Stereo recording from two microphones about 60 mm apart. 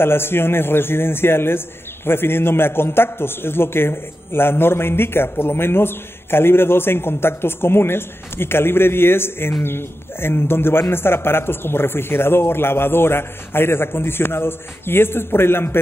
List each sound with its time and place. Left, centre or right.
0.0 s a man's voice: left